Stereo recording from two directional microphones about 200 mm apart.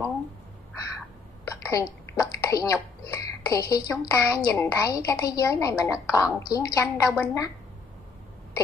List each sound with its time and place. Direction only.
1.4 s a child's voice: 15° left (ahead or behind)